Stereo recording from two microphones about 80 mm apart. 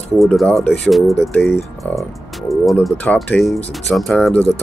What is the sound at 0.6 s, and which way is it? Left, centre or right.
Speech, centre.